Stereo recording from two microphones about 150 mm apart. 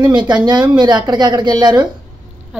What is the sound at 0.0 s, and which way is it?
Speech, 30° right (ahead or behind).